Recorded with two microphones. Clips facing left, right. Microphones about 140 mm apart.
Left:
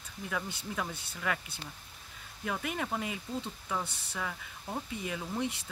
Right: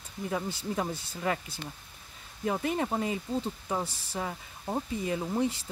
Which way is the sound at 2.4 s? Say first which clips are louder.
Right 6 dB; 30° right (ahead or behind).